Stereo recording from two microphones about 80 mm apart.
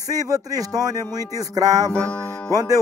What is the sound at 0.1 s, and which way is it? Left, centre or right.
Music, right.